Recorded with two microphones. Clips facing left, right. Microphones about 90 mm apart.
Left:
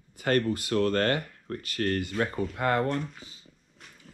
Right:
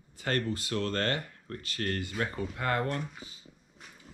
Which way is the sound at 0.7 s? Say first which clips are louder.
Left 6 dB; 45° left (ahead or behind).